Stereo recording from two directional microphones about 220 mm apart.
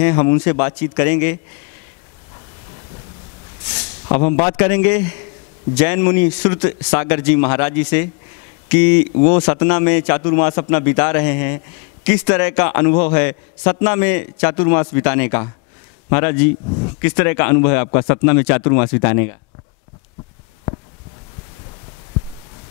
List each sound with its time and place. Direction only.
0.0 s a man's voice: 15° left (ahead or behind)
4.1 s a man's voice: 15° left (ahead or behind)